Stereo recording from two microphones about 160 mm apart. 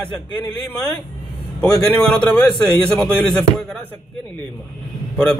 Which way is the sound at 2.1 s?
5° left (ahead or behind).